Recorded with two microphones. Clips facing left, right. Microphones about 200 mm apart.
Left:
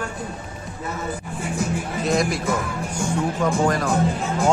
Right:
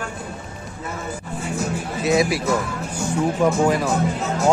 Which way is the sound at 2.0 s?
5° right (ahead or behind).